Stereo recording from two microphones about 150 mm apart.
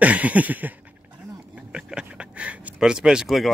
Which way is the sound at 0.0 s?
10° right (ahead or behind).